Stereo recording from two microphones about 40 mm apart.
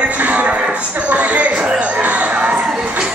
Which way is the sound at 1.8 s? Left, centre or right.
Right.